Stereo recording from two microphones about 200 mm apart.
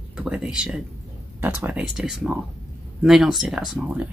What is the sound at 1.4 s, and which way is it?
Speech, 10° right (ahead or behind).